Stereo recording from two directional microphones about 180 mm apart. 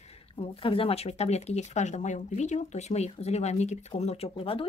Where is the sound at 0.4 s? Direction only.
30° left (ahead or behind).